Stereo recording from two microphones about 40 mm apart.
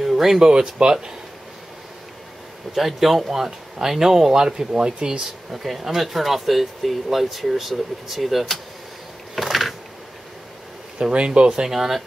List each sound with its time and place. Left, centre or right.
0.0 s a sound: centre
0.5 s speech: centre
2.7 s speech: centre
4.7 s speech: right
5.5 s speech: centre
9.3 s a sound: centre
11.0 s speech: right
11.6 s speech: centre